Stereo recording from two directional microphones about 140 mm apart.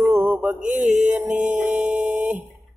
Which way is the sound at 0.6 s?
10° right (ahead or behind).